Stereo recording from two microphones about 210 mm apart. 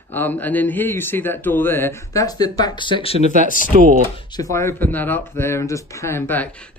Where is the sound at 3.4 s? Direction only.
40° left (ahead or behind).